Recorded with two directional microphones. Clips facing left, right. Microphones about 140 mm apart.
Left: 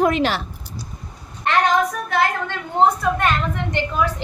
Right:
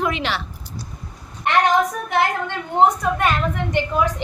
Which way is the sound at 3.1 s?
10° right (ahead or behind).